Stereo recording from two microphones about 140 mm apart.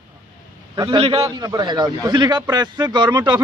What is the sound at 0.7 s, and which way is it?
A man's voice, 30° right (ahead or behind).